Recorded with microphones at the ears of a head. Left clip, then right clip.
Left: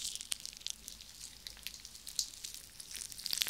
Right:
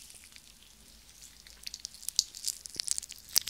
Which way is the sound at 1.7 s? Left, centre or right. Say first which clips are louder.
Right 10 dB; right.